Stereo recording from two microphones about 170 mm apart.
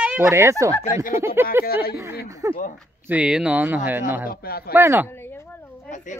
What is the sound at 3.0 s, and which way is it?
Speech, 10° right (ahead or behind).